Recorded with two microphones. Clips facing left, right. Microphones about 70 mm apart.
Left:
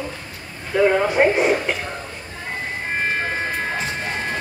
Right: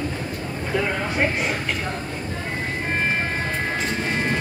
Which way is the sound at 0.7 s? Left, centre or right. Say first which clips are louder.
Left 8 dB; centre.